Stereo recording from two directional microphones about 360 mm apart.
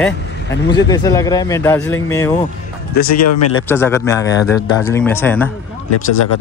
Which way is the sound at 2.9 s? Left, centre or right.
Left.